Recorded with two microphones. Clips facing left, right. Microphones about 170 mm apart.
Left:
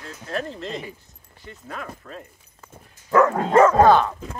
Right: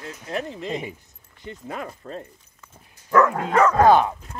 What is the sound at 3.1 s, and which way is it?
Speech, 20° left (ahead or behind).